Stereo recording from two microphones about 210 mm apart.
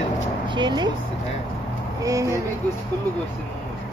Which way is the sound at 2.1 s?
15° right (ahead or behind).